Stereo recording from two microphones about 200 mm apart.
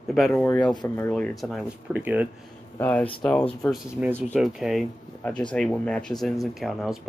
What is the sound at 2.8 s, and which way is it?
Speech, 10° left (ahead or behind).